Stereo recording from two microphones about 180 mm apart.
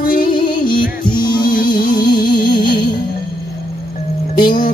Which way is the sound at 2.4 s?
25° left (ahead or behind).